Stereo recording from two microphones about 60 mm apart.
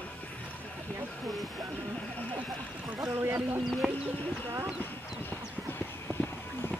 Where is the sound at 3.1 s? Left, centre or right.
Right.